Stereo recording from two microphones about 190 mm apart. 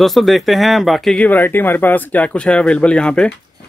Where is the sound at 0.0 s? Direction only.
Centre (ahead or behind).